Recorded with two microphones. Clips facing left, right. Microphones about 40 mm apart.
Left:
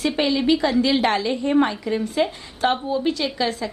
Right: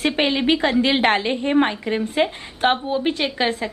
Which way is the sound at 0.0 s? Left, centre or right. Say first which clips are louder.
Right 1 dB; right.